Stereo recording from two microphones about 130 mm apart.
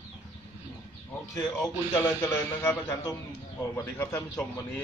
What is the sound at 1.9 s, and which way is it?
A man's voice, 20° left (ahead or behind).